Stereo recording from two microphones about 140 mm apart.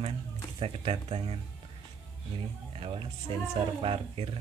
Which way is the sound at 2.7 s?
40° right (ahead or behind).